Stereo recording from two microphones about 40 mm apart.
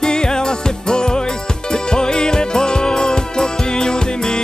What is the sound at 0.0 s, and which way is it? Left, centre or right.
Music, centre.